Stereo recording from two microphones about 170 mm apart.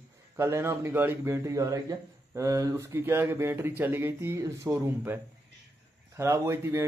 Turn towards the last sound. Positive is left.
turn(degrees=-15)  # may be behind; listen again after turning